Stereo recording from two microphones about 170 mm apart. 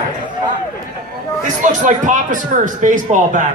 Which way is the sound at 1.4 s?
50° right (ahead or behind).